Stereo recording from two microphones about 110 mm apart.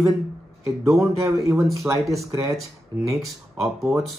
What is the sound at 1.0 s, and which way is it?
Speech, 30° right (ahead or behind).